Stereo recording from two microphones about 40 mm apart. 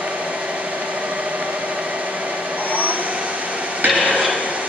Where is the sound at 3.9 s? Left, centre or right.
Right.